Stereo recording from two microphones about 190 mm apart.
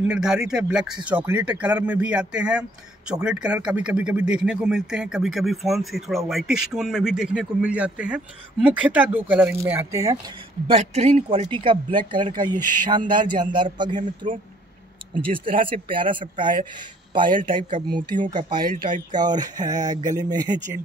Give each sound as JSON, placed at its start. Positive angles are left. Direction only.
{"t": 0.0, "sound": "speech", "side_deg": -5}
{"t": 10.7, "sound": "speech", "side_deg": -35}
{"t": 15.3, "sound": "speech", "side_deg": -25}